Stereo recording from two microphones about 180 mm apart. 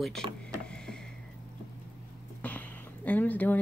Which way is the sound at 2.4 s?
10° left (ahead or behind).